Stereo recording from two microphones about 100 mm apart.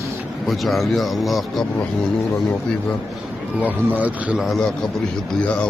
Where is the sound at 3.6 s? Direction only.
15° right (ahead or behind).